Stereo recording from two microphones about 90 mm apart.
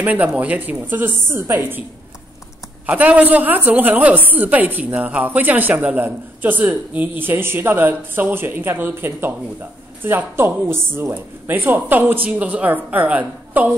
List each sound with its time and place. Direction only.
0.0 s a woman's voice: 20° right (ahead or behind)
2.9 s a woman's voice: 15° right (ahead or behind)